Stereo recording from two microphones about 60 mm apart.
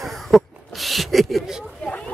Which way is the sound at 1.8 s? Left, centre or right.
Centre.